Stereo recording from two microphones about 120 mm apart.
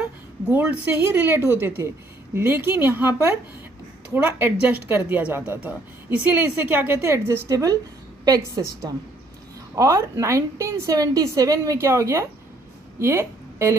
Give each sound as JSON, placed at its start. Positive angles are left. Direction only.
{"t": 0.5, "sound": "a woman's voice", "side_deg": -15}